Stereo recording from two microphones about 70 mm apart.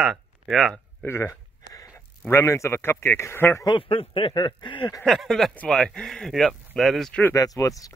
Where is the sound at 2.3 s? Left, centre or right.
Left.